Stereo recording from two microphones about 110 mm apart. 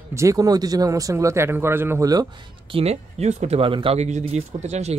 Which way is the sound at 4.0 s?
90° right.